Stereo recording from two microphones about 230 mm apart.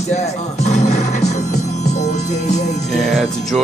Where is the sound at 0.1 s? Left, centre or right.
Left.